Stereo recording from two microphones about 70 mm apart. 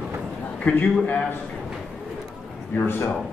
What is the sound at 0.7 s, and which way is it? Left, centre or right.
Speech, centre.